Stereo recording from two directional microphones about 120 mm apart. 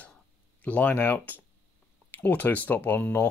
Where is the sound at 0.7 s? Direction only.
15° left (ahead or behind).